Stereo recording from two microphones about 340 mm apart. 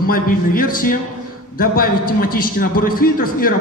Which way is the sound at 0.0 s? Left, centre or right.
Left.